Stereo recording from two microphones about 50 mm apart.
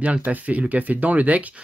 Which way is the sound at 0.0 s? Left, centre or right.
Right.